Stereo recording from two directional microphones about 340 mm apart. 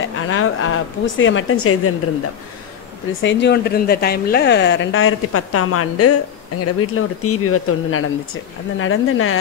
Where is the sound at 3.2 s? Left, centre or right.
Left.